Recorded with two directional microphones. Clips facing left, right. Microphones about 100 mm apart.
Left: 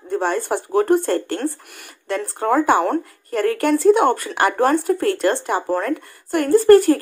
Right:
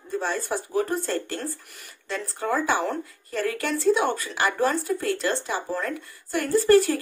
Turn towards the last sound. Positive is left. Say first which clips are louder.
# left 7 dB
turn(degrees=55)  # may be behind; listen again after turning